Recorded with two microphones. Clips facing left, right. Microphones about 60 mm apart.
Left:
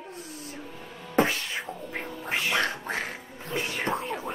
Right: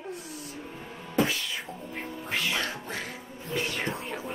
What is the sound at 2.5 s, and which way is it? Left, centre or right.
Quack, left.